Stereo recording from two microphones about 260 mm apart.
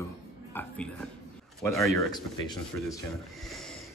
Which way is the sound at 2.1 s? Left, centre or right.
Centre.